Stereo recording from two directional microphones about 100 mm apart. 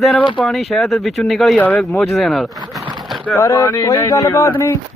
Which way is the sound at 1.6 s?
15° left (ahead or behind).